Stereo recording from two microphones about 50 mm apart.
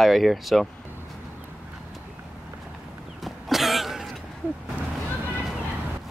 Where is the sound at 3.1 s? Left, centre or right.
Centre.